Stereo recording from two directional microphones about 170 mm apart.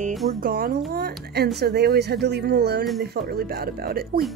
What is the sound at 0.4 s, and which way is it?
Speech, 60° right (ahead or behind).